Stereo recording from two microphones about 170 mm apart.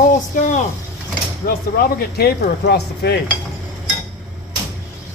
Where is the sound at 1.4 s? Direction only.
65° left (ahead or behind).